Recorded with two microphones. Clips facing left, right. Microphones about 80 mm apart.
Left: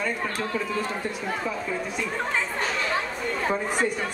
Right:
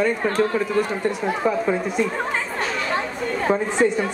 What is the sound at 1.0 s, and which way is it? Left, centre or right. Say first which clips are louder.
Speech: right 8 dB; right.